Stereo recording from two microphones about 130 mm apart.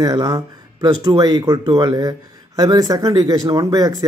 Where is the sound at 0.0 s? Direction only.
30° right (ahead or behind).